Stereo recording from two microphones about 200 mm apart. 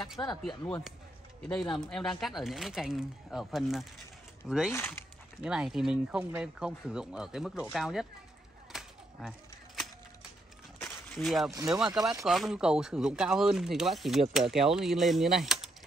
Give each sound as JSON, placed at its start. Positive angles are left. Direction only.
{"t": 0.4, "sound": "speech", "side_deg": 0}
{"t": 1.5, "sound": "speech", "side_deg": 20}
{"t": 1.9, "sound": "speech", "side_deg": 0}
{"t": 4.7, "sound": "speech", "side_deg": 10}
{"t": 5.4, "sound": "speech", "side_deg": -5}
{"t": 8.7, "sound": "a sound", "side_deg": 0}
{"t": 9.2, "sound": "speech", "side_deg": -5}
{"t": 10.8, "sound": "a sound", "side_deg": 0}
{"t": 11.5, "sound": "speech", "side_deg": -15}
{"t": 12.3, "sound": "speech", "side_deg": 0}